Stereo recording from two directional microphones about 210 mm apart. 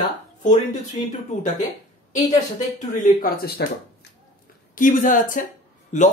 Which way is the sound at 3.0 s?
45° left (ahead or behind).